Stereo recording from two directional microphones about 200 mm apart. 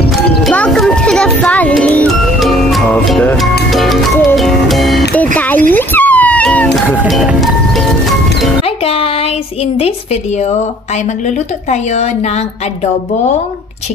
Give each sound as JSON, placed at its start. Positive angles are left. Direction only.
{"t": 0.4, "sound": "music", "side_deg": 0}
{"t": 5.7, "sound": "a sound", "side_deg": 10}
{"t": 7.0, "sound": "music", "side_deg": -5}
{"t": 8.6, "sound": "music", "side_deg": 30}
{"t": 11.2, "sound": "speech", "side_deg": 35}